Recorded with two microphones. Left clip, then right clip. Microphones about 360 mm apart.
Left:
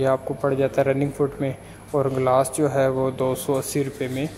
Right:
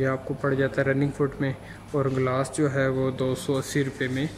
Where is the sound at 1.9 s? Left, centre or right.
Left.